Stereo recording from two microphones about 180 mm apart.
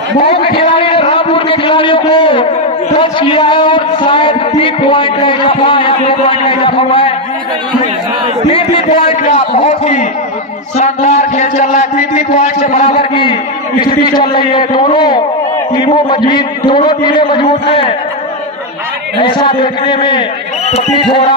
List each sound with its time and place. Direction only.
0.6 s a sound: 30° left (ahead or behind)
3.0 s a man's voice: 25° left (ahead or behind)
8.5 s speech: 30° left (ahead or behind)
10.8 s a sound: 40° left (ahead or behind)
15.7 s a man's voice: 25° left (ahead or behind)
19.1 s a man's voice: 25° left (ahead or behind)